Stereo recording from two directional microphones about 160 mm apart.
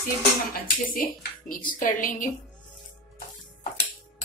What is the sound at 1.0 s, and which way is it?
A woman's voice, 60° left (ahead or behind).